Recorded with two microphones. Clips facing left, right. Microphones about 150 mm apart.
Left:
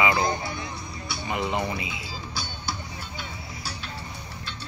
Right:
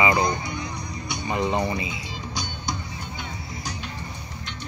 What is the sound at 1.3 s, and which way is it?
Speech, 30° right (ahead or behind).